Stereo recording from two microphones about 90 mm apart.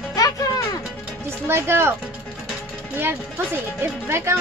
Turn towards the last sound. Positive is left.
turn(degrees=-30)  # may be behind; listen again after turning